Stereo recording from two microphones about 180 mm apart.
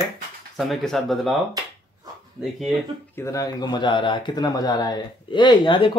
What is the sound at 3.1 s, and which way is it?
Speech, 15° left (ahead or behind).